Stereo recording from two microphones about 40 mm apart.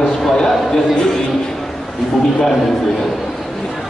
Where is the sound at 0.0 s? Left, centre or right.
Centre.